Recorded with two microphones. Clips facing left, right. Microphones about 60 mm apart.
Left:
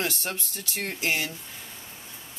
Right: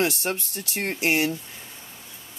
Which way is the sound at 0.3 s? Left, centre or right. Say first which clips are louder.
Right 5 dB; right.